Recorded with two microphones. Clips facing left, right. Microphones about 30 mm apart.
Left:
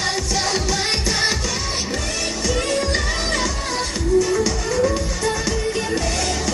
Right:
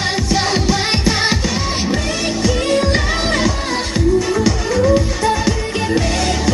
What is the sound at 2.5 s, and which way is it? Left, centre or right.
Music, right.